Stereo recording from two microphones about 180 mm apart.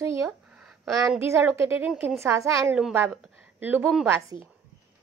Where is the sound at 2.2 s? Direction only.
15° right (ahead or behind).